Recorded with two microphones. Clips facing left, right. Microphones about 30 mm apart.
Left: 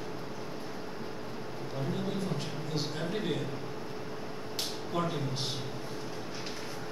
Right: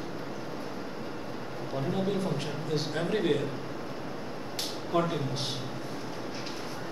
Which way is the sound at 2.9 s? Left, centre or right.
Centre.